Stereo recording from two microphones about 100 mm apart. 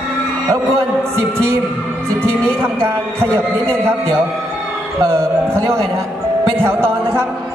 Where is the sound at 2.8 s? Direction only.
25° right (ahead or behind).